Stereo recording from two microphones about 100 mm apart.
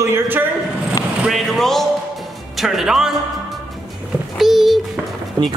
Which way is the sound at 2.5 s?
Centre (ahead or behind).